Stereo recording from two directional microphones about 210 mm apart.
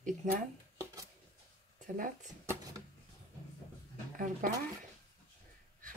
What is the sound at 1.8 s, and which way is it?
Speech, 40° right (ahead or behind).